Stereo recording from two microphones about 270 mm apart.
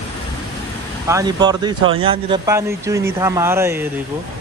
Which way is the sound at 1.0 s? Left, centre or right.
Centre.